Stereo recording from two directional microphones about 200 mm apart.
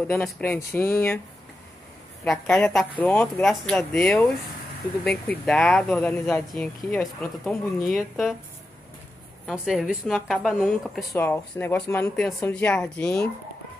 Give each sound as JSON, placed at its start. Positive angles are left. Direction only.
{"t": 0.1, "sound": "speech", "side_deg": 10}
{"t": 2.2, "sound": "speech", "side_deg": 5}
{"t": 9.5, "sound": "speech", "side_deg": -5}